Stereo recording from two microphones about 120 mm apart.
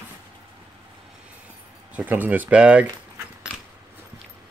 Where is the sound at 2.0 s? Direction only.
15° right (ahead or behind).